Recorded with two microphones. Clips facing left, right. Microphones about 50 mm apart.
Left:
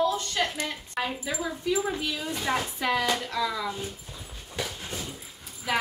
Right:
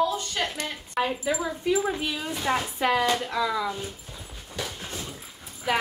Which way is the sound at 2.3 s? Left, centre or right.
Centre.